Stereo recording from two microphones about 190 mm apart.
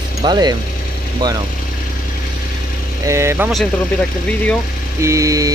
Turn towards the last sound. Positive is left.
turn(degrees=-15)  # may be behind; listen again after turning